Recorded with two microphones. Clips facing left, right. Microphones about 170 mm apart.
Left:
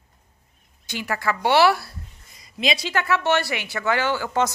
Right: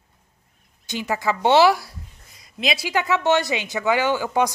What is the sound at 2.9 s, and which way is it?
A woman's voice, 15° right (ahead or behind).